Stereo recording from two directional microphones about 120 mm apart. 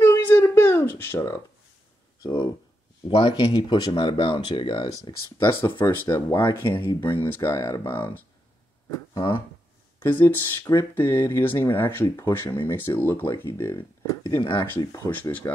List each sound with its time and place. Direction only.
0.1 s a sound: 15° left (ahead or behind)
2.2 s speech: 40° left (ahead or behind)
5.4 s speech: 20° left (ahead or behind)
6.6 s speech: 40° left (ahead or behind)
7.0 s speech: 15° left (ahead or behind)
9.1 s speech: 40° left (ahead or behind)
9.9 s speech: 15° left (ahead or behind)
13.7 s speech: 40° left (ahead or behind)
14.9 s speech: 15° left (ahead or behind)
15.4 s speech: 25° left (ahead or behind)